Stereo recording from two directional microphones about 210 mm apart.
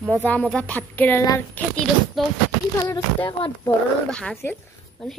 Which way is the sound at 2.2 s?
Centre (ahead or behind).